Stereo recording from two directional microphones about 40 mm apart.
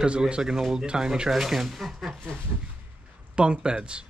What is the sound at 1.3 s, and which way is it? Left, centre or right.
Speech, centre.